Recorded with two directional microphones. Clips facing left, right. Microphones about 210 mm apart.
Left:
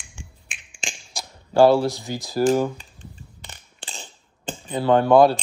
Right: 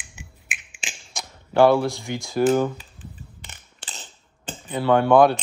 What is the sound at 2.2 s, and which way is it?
Speech, centre (ahead or behind).